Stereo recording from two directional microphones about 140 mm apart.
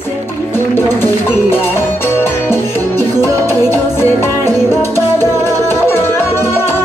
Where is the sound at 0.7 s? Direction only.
15° left (ahead or behind).